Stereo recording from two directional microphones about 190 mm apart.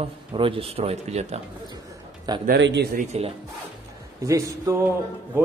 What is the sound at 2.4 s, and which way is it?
Speech, 65° right (ahead or behind).